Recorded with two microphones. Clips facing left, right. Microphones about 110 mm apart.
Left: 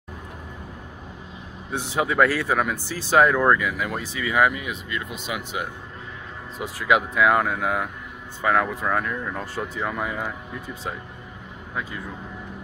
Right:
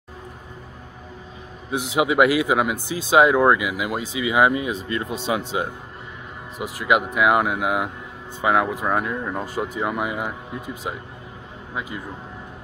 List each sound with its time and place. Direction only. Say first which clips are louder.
2.0 s speech: right 3 dB; 15° right (ahead or behind)
6.6 s speech: right 1 dB; 5° right (ahead or behind)